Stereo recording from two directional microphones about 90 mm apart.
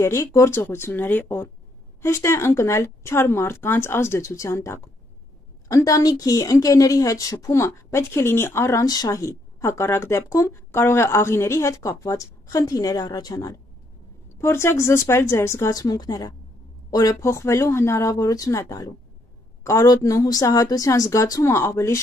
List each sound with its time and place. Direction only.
0.0 s speech: 35° left (ahead or behind)
2.0 s speech: 35° left (ahead or behind)
9.1 s speech: 35° left (ahead or behind)
14.4 s speech: 25° left (ahead or behind); by 16.3 s 45° left (ahead or behind)
17.2 s speech: 30° left (ahead or behind)